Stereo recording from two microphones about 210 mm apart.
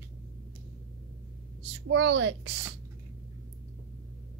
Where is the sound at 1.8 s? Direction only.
60° right (ahead or behind).